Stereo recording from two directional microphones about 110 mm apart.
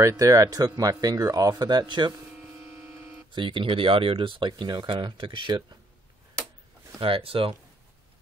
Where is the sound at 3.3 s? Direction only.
50° right (ahead or behind).